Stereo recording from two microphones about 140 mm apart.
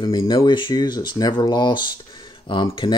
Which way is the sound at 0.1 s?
25° left (ahead or behind).